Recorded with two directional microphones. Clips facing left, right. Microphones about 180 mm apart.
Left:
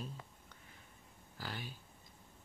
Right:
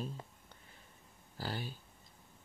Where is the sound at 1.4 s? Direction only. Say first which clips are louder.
Right 5 dB; 30° right (ahead or behind).